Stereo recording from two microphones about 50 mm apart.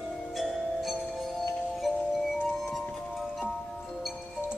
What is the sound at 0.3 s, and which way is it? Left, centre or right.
Music, centre.